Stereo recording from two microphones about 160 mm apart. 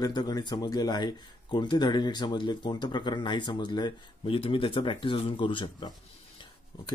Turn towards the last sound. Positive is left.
turn(degrees=30)  # may be behind; listen again after turning